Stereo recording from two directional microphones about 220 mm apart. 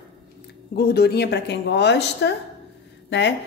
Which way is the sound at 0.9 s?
50° left (ahead or behind).